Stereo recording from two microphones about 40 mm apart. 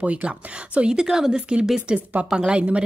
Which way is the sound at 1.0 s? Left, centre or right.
Centre.